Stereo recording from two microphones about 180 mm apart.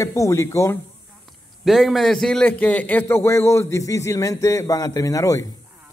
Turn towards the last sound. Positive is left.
turn(degrees=20)  # may be behind; listen again after turning